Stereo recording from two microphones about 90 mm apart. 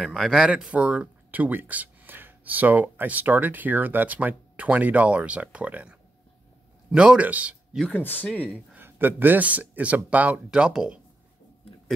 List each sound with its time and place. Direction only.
0.0 s speech: 5° left (ahead or behind)
0.5 s speech: 15° right (ahead or behind)
7.9 s speech: 20° left (ahead or behind)
8.7 s speech: 20° right (ahead or behind)